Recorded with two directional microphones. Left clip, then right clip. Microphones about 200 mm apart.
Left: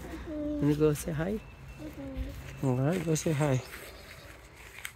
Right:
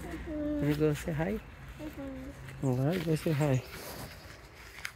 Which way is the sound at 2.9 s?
Centre (ahead or behind).